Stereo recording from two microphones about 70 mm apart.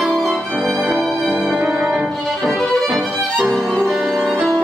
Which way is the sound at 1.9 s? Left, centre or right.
Centre.